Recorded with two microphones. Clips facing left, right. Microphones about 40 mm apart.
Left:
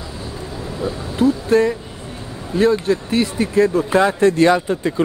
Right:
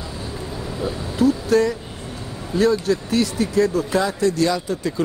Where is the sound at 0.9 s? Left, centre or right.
Left.